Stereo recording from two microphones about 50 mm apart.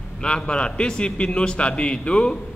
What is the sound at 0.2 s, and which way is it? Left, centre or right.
A man's voice, centre.